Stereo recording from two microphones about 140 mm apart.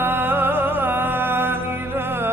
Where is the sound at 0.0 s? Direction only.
15° right (ahead or behind).